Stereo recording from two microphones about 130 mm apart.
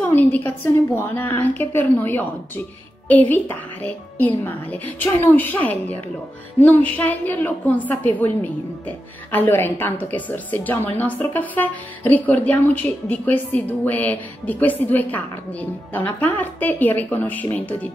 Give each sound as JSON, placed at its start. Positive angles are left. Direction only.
{"t": 0.1, "sound": "a woman's voice", "side_deg": 15}